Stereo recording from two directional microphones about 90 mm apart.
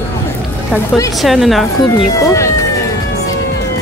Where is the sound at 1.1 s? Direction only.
Centre (ahead or behind).